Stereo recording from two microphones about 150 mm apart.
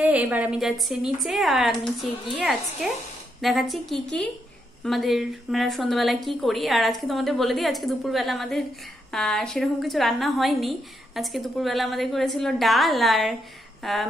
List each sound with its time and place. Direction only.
0.0 s a woman's voice: 10° right (ahead or behind)